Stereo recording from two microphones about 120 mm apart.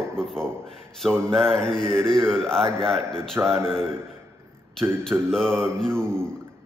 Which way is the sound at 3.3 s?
20° right (ahead or behind).